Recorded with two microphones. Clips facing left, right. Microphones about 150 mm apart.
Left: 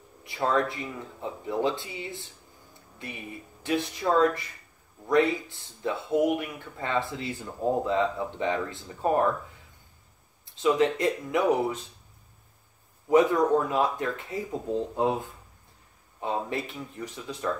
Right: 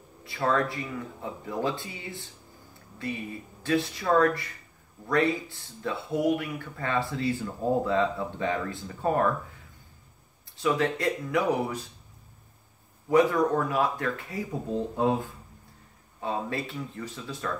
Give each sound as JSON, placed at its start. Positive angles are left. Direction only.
{"t": 0.2, "sound": "speech", "side_deg": 20}
{"t": 10.5, "sound": "speech", "side_deg": 20}
{"t": 13.1, "sound": "speech", "side_deg": 20}